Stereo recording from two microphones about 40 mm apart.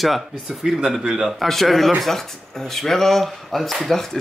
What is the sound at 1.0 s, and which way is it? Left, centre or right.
Speech, centre.